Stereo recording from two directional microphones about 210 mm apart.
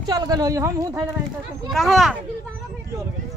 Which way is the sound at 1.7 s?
Centre (ahead or behind).